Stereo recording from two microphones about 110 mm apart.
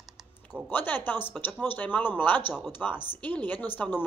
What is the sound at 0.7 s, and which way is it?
A woman's voice, 20° left (ahead or behind).